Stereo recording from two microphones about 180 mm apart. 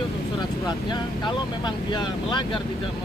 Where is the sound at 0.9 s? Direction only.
25° left (ahead or behind).